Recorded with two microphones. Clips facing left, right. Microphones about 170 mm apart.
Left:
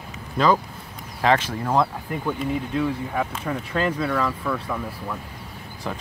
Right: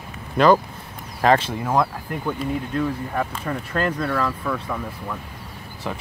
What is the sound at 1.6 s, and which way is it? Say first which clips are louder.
Speech: even; centre (ahead or behind).